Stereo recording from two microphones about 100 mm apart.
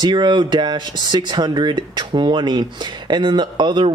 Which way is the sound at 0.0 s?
50° right (ahead or behind).